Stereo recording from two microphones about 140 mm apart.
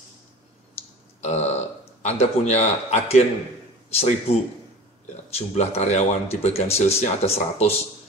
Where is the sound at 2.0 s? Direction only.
55° left (ahead or behind).